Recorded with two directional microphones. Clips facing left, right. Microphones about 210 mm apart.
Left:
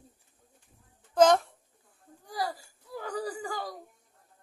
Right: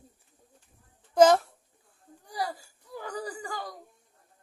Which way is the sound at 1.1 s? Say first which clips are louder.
Right 2 dB; 5° right (ahead or behind).